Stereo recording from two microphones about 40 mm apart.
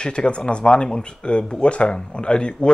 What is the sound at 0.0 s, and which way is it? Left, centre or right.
Speech, left.